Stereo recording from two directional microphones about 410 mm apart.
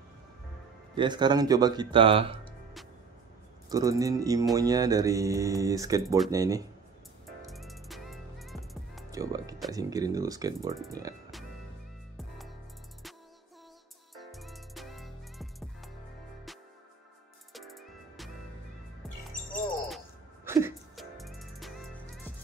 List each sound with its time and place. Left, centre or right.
0.9 s mantra: centre
3.6 s mantra: centre
7.4 s music: centre
14.1 s music: centre
17.6 s music: centre
20.4 s music: centre